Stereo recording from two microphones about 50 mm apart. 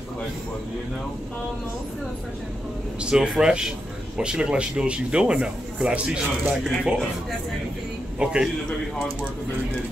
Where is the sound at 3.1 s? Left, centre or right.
Centre.